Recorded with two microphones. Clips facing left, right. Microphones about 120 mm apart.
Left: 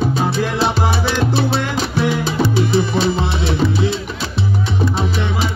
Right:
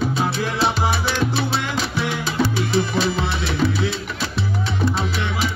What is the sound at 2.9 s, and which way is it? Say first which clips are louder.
Music: left 4 dB; 25° left (ahead or behind).